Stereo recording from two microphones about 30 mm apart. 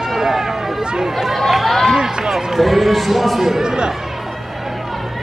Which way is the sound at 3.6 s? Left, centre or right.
Right.